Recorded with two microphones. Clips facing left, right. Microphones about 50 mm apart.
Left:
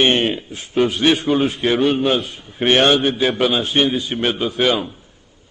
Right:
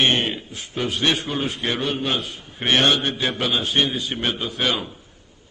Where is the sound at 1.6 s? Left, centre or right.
Centre.